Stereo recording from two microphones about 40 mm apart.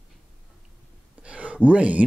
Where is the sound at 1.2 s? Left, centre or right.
Right.